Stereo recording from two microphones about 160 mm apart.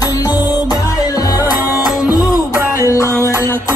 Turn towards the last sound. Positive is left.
turn(degrees=20)  # may be behind; listen again after turning